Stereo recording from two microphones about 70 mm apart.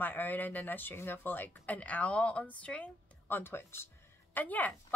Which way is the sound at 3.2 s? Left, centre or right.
Left.